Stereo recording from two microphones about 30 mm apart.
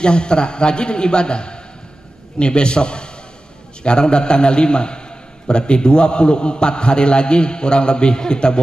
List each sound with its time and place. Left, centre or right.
0.0 s a man's voice: left